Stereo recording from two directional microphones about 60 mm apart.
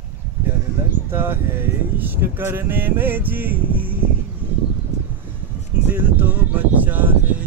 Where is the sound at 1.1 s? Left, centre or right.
Right.